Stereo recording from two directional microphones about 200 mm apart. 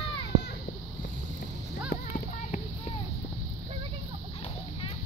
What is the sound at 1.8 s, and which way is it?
Music, 40° left (ahead or behind).